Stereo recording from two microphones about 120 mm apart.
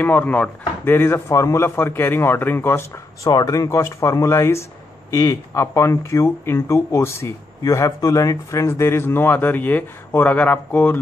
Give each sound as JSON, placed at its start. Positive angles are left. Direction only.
{"t": 0.0, "sound": "speech", "side_deg": 15}
{"t": 3.3, "sound": "speech", "side_deg": 30}